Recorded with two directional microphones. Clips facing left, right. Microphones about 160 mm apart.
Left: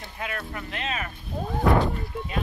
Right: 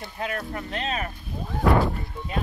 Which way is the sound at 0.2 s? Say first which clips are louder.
Right 3 dB; 40° right (ahead or behind).